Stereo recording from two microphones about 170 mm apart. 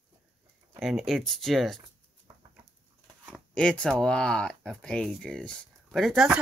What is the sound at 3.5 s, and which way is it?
Speech, 5° left (ahead or behind).